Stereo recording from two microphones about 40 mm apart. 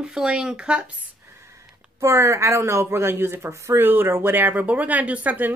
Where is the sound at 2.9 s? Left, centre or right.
Right.